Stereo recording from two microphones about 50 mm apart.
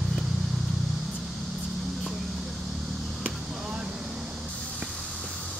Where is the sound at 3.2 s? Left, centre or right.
Right.